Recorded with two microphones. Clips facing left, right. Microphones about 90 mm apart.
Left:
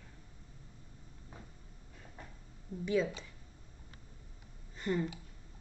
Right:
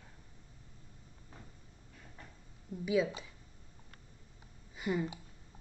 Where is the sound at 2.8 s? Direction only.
5° right (ahead or behind).